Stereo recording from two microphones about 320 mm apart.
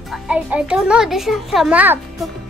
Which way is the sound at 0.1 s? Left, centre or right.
Centre.